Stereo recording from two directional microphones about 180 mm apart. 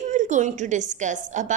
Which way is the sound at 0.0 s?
40° right (ahead or behind).